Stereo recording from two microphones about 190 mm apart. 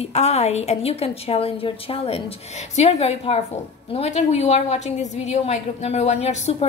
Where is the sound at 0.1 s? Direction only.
35° left (ahead or behind).